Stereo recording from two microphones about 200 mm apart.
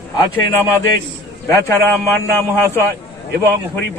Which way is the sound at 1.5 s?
10° left (ahead or behind).